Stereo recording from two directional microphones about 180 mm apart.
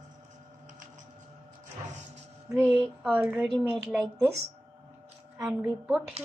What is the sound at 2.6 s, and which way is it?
A woman's voice, centre (ahead or behind).